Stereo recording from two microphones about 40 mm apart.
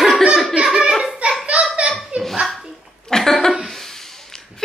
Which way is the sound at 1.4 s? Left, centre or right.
Right.